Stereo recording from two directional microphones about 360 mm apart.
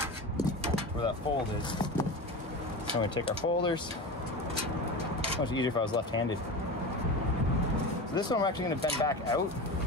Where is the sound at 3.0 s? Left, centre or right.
Centre.